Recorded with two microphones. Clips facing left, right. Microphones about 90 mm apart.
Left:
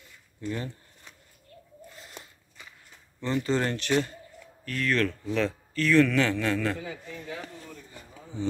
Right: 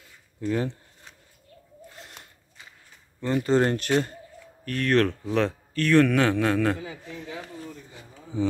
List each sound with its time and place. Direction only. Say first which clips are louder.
0.4 s speech: right 7 dB; 85° right
3.2 s speech: right 5 dB; 45° right (ahead or behind)
4.6 s a man's voice: right 5 dB; 60° right (ahead or behind)
6.8 s speech: right 1 dB; 5° right (ahead or behind)